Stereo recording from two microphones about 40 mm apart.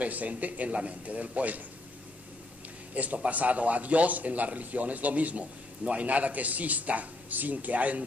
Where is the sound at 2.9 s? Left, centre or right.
Right.